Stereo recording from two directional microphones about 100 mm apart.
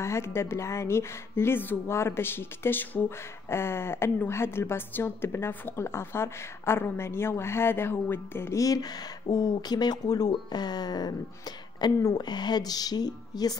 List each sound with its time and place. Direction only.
0.0 s speech: 25° left (ahead or behind); by 13.6 s 40° left (ahead or behind)